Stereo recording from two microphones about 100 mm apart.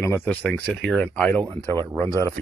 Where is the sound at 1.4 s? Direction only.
45° right (ahead or behind).